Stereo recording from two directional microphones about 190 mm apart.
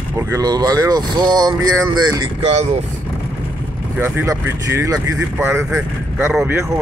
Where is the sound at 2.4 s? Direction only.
35° right (ahead or behind).